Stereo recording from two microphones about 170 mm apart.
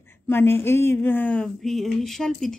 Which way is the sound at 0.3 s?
15° left (ahead or behind).